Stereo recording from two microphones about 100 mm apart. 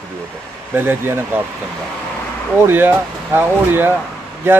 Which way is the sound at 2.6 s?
20° right (ahead or behind).